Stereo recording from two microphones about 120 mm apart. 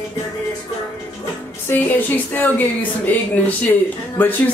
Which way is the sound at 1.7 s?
15° left (ahead or behind).